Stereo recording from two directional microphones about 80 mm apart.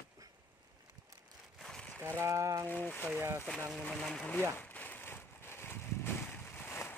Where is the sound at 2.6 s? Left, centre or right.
Left.